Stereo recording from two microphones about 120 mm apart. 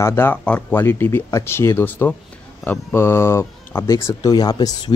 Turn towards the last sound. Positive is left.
turn(degrees=35)  # may be behind; listen again after turning